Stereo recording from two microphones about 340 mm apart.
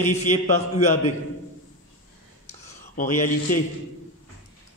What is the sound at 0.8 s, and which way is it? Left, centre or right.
Speech, centre.